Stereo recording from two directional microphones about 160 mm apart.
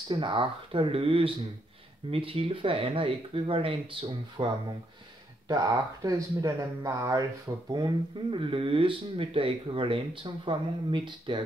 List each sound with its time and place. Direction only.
0.1 s speech: 35° right (ahead or behind)